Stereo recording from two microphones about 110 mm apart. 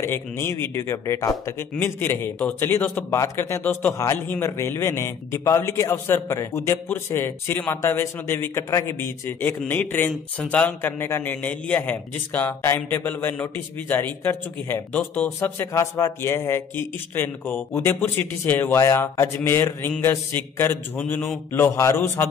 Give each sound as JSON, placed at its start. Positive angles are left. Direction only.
{"t": 0.0, "sound": "a man's voice", "side_deg": 20}